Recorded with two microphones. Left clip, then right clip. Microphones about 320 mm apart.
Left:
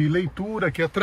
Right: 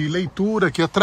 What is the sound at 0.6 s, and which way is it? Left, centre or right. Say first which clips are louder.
Speech: right 2 dB; centre.